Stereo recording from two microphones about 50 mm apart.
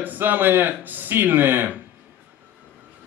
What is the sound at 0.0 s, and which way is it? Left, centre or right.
A man's voice, right.